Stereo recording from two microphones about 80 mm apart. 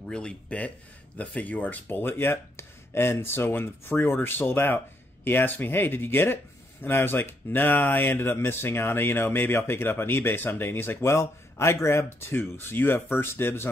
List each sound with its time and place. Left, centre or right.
0.1 s speech: centre; by 13.7 s left